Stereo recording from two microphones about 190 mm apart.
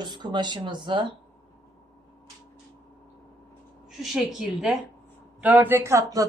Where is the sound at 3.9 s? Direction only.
Centre (ahead or behind).